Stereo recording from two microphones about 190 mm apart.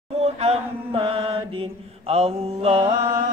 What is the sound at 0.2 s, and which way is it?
Chant, 35° right (ahead or behind).